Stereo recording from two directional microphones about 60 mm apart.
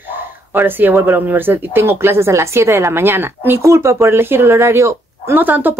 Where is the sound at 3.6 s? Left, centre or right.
Right.